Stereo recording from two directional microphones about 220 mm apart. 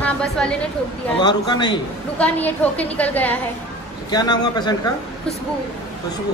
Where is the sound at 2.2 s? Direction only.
5° left (ahead or behind).